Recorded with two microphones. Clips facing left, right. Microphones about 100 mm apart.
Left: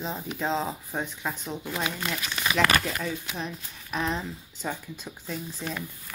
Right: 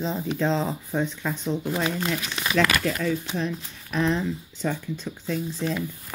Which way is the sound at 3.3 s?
30° right (ahead or behind).